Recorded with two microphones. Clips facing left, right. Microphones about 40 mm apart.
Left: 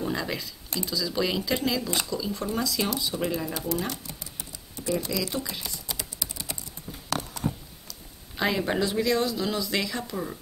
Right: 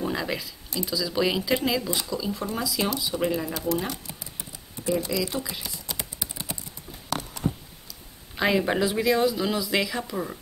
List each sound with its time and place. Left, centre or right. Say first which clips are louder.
0.0 s a sound: right 1 dB; centre
0.8 s speech: right 3 dB; centre
3.8 s speech: right 1 dB; centre
4.7 s a sound: right 2 dB; right
5.0 s speech: right 2 dB; centre
5.9 s typing: right 1 dB; right
7.9 s speech: right 1 dB; centre